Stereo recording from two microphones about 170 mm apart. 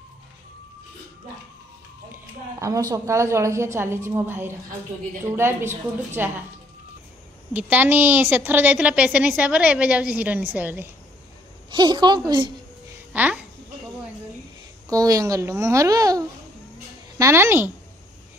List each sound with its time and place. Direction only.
2.6 s a woman's voice: 20° right (ahead or behind)
7.5 s a woman's voice: 10° right (ahead or behind)
11.7 s a child's voice: 25° right (ahead or behind)
13.1 s speech: 10° right (ahead or behind)
14.9 s a child's voice: 20° right (ahead or behind)